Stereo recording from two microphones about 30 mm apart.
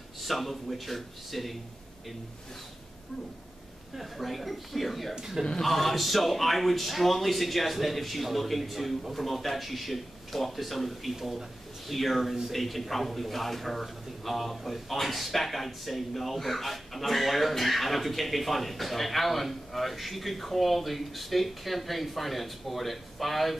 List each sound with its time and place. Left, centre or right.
0.2 s a man's voice: centre
3.9 s a man's voice: centre
5.1 s speech: centre
5.6 s a man's voice: centre
11.1 s speech: centre
11.9 s a man's voice: centre